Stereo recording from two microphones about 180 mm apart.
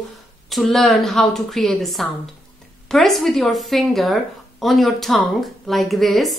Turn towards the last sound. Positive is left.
turn(degrees=0)  # may be behind; listen again after turning